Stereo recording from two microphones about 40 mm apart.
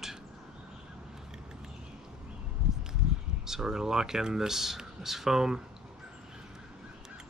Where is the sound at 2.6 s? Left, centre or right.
Centre.